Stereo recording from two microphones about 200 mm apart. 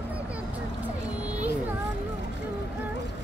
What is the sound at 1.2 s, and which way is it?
Music, 10° right (ahead or behind).